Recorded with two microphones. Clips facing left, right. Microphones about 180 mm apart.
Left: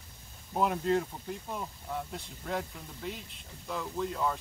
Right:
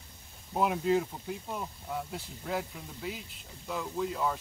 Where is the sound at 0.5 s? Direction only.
5° right (ahead or behind).